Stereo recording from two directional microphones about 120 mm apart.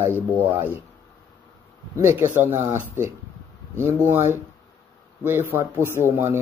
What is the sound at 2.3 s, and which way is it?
Speech, 20° right (ahead or behind).